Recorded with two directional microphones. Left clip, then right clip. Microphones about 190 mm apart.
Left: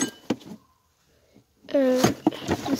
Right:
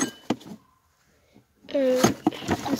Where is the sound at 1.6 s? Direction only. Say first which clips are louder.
Left 1 dB; 20° left (ahead or behind).